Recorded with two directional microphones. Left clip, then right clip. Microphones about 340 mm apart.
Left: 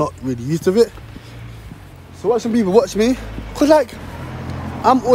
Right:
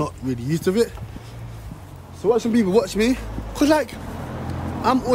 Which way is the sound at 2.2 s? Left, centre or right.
Centre.